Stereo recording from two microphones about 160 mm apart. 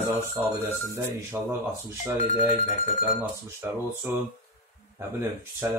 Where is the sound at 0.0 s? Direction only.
15° right (ahead or behind).